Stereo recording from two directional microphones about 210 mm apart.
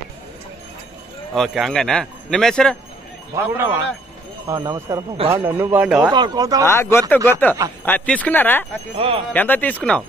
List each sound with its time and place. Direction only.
1.3 s speech: centre (ahead or behind)
3.3 s a man's voice: 10° right (ahead or behind)
5.9 s speech: 20° right (ahead or behind)
6.6 s speech: 10° left (ahead or behind)
8.9 s speech: 25° right (ahead or behind)
9.3 s speech: 10° left (ahead or behind)